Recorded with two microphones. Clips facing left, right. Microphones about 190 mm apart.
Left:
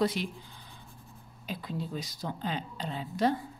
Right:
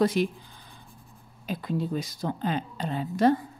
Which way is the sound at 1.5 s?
50° right (ahead or behind).